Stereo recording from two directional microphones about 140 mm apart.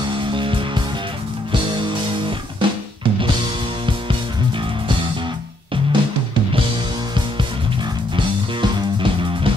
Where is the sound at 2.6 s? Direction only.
35° right (ahead or behind).